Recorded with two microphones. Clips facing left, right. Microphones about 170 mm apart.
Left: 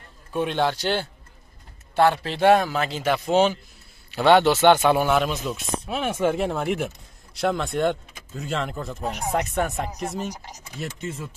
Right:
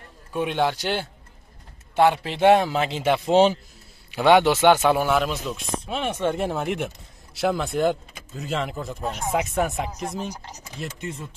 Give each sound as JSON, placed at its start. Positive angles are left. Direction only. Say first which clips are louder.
{"t": 0.3, "sound": "a man's voice", "louder": "even", "side_deg": -10}
{"t": 4.1, "sound": "speech", "louder": "even", "side_deg": -10}